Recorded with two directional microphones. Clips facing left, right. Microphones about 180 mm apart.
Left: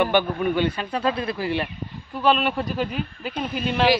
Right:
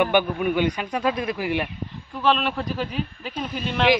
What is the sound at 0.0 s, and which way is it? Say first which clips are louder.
Speech: even; 15° right (ahead or behind).